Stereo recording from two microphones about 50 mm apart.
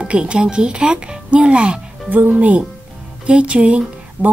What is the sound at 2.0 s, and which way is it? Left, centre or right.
Speech, right.